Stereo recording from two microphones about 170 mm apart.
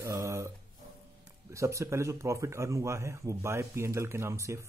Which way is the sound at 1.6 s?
15° right (ahead or behind).